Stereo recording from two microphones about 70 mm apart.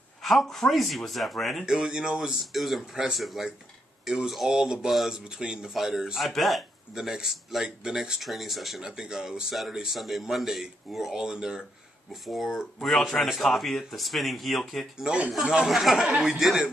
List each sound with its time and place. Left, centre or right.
0.2 s speech: centre
15.0 s speech: centre